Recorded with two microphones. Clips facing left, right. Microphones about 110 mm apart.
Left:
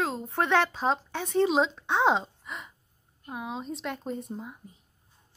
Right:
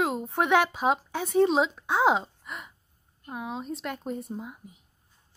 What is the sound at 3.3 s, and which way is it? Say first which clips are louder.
A woman's voice: right 1 dB; centre (ahead or behind).